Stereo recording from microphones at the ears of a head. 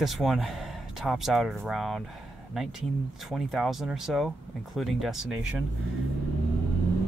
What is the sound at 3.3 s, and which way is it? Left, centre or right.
Speech, centre.